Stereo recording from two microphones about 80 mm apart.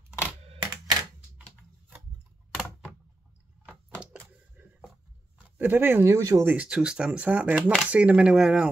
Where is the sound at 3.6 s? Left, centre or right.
Centre.